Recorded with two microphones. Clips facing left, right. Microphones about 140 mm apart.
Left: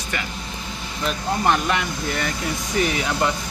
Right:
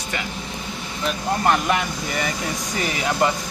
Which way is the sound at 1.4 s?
5° right (ahead or behind).